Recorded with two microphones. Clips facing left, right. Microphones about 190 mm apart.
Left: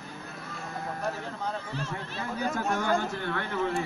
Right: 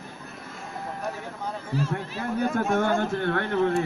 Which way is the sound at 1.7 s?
5° right (ahead or behind).